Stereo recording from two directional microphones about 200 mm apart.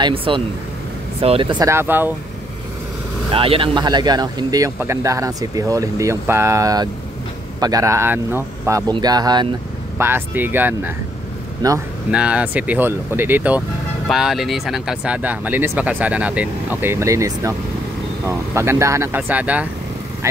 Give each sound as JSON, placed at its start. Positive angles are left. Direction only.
{"t": 0.0, "sound": "speech", "side_deg": -25}
{"t": 3.3, "sound": "speech", "side_deg": -30}
{"t": 12.1, "sound": "speech", "side_deg": -5}